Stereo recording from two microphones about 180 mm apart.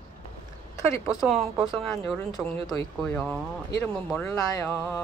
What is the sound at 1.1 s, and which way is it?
Speech, centre (ahead or behind).